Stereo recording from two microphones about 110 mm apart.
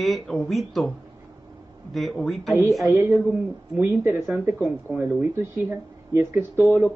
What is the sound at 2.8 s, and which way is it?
Speech, 20° right (ahead or behind).